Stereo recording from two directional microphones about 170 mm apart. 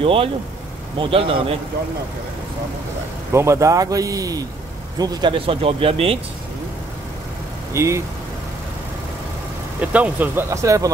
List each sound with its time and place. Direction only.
0.0 s speech: 30° right (ahead or behind)
3.3 s speech: 15° right (ahead or behind); by 6.1 s 35° right (ahead or behind)
7.7 s speech: 15° right (ahead or behind)
9.8 s speech: 10° right (ahead or behind)